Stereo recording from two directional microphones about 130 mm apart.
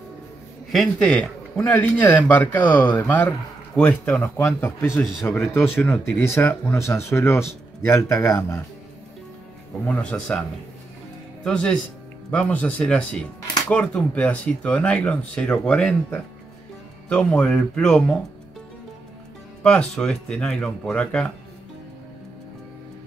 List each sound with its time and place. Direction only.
0.7 s speech: 5° left (ahead or behind); by 8.6 s 20° left (ahead or behind)
9.8 s speech: 10° left (ahead or behind)
11.4 s speech: 5° left (ahead or behind)
20.0 s speech: 5° left (ahead or behind)